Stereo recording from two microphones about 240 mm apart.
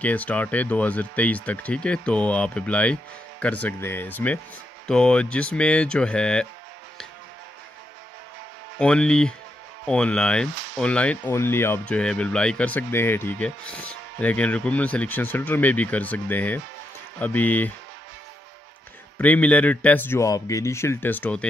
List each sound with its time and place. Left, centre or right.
0.0 s speech: centre
8.7 s speech: centre
19.1 s speech: centre